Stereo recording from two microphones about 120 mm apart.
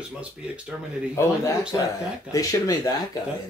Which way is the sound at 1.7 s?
30° left (ahead or behind).